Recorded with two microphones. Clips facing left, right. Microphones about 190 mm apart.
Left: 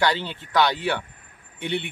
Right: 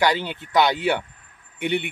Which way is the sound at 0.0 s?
15° right (ahead or behind).